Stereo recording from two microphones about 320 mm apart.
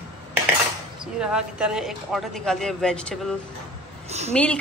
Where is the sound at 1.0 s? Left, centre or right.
Centre.